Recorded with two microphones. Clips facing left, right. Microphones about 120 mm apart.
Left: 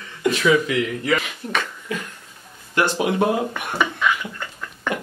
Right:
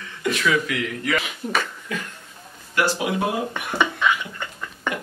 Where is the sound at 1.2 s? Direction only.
Centre (ahead or behind).